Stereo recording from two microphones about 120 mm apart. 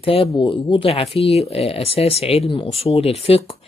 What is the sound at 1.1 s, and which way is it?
Speech, 55° left (ahead or behind).